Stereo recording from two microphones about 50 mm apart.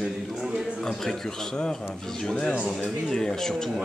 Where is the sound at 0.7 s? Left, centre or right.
Centre.